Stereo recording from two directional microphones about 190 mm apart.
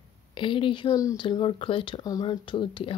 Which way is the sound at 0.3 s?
25° left (ahead or behind).